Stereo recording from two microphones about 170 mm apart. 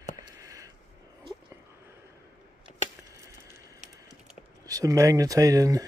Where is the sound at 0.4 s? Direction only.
20° right (ahead or behind).